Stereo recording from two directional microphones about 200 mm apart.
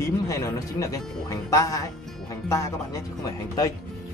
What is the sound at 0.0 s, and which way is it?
Speech, 15° left (ahead or behind).